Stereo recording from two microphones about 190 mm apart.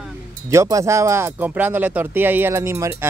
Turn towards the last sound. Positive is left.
turn(degrees=-15)  # may be behind; listen again after turning